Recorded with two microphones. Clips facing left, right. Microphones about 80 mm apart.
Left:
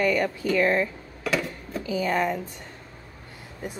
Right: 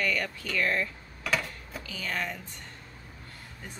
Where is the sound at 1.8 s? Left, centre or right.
Centre.